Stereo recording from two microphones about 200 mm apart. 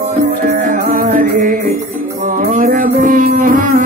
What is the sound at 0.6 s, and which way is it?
Music, 45° right (ahead or behind).